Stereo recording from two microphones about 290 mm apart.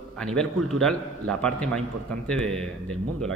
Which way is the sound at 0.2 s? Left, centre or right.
Centre.